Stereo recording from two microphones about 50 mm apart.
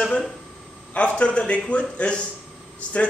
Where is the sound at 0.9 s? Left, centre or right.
Left.